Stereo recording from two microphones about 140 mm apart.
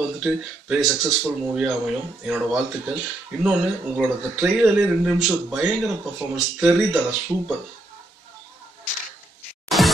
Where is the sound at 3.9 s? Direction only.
5° right (ahead or behind).